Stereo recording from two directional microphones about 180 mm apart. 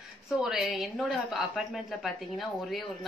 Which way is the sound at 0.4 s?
Centre (ahead or behind).